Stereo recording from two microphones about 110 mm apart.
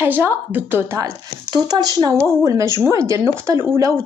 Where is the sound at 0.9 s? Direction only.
40° right (ahead or behind).